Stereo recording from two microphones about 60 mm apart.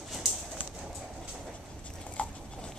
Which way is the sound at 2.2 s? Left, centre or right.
Left.